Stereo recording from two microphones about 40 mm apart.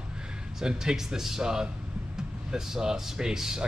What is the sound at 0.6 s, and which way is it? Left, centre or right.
Speech, centre.